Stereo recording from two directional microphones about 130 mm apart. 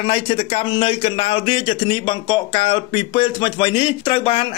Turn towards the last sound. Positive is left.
turn(degrees=45)  # may be behind; listen again after turning